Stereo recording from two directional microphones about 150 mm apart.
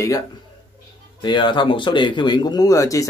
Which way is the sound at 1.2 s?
30° left (ahead or behind).